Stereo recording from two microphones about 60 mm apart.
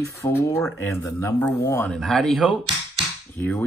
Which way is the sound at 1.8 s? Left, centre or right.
Centre.